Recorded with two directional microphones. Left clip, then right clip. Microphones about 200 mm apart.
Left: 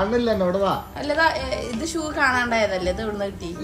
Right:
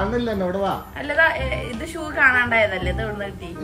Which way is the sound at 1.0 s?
20° left (ahead or behind).